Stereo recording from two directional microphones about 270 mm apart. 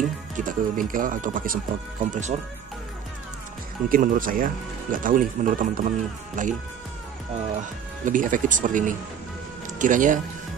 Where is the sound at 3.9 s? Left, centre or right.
Right.